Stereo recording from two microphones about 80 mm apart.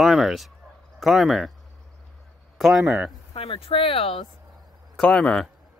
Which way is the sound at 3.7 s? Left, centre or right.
Left.